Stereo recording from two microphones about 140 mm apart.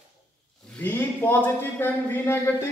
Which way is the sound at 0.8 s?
15° left (ahead or behind).